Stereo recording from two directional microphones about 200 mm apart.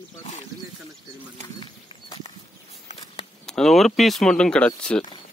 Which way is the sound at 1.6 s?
25° left (ahead or behind).